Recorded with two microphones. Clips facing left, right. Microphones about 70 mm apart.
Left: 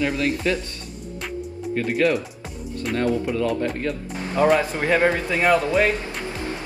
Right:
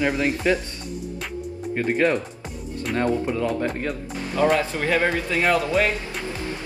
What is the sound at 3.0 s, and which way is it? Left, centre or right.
Speech, right.